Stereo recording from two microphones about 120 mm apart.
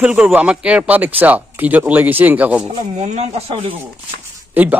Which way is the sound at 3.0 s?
65° right (ahead or behind).